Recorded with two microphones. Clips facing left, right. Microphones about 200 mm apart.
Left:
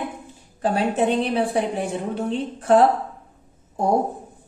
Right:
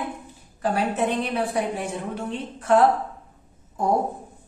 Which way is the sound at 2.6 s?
35° left (ahead or behind).